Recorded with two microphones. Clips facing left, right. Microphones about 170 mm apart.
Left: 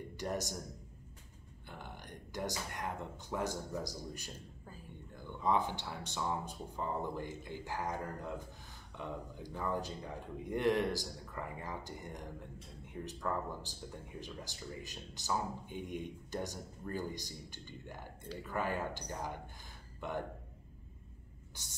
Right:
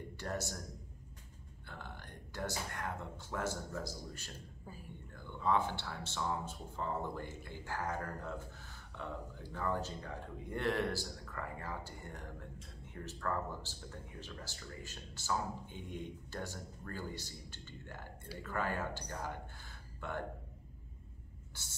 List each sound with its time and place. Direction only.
0.1 s speech: 15° left (ahead or behind)
1.7 s speech: 15° left (ahead or behind)
21.6 s speech: 15° left (ahead or behind)